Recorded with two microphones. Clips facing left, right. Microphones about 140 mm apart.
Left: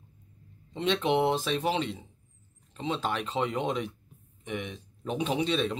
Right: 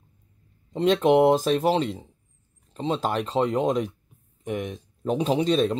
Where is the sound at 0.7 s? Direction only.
40° right (ahead or behind).